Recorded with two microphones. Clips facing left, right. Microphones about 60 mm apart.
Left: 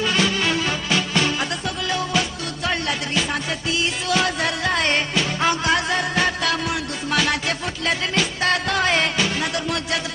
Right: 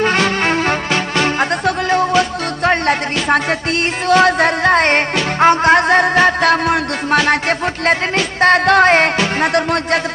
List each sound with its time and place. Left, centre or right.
0.0 s music: right